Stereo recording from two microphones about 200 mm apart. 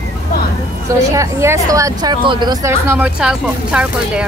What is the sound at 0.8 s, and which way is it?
Speech, 15° right (ahead or behind).